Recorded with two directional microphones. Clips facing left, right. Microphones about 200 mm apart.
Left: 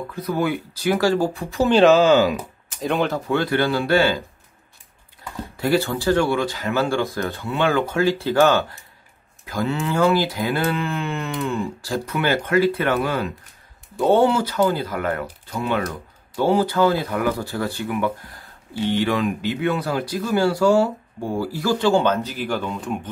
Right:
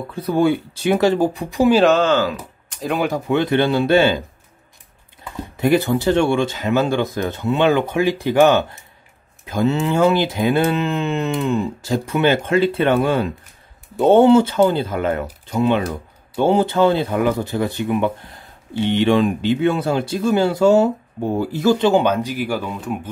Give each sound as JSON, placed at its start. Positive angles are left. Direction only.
{"t": 0.1, "sound": "speech", "side_deg": -30}
{"t": 1.8, "sound": "speech", "side_deg": 5}
{"t": 2.8, "sound": "speech", "side_deg": 0}
{"t": 3.1, "sound": "speech", "side_deg": -20}
{"t": 5.6, "sound": "speech", "side_deg": -20}
{"t": 16.3, "sound": "speech", "side_deg": -25}